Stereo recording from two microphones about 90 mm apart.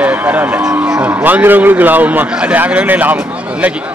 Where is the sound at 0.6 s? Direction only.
10° right (ahead or behind).